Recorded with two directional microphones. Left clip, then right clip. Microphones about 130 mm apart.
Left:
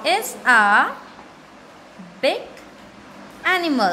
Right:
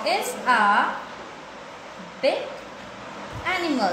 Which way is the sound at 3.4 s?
40° left (ahead or behind).